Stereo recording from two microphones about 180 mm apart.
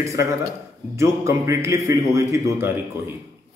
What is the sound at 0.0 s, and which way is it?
A man's voice, 15° right (ahead or behind).